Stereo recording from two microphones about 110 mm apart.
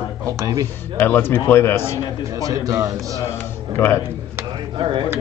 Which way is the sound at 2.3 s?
30° right (ahead or behind).